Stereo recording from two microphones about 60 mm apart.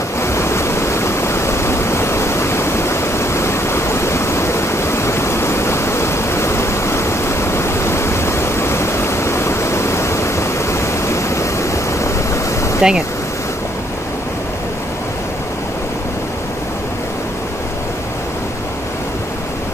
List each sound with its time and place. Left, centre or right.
0.2 s waves: left
12.8 s speech: centre